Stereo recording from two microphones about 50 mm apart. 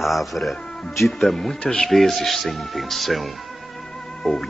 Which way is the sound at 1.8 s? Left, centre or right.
Centre.